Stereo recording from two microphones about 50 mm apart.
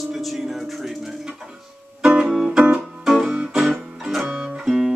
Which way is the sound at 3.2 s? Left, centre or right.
Centre.